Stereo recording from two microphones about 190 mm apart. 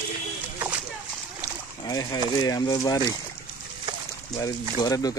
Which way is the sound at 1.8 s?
20° left (ahead or behind).